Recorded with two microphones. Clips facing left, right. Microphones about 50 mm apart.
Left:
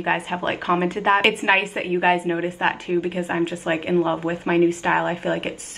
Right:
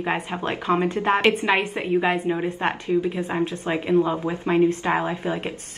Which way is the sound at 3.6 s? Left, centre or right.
Left.